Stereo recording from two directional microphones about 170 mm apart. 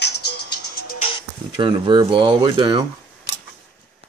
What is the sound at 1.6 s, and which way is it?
Speech, 30° right (ahead or behind).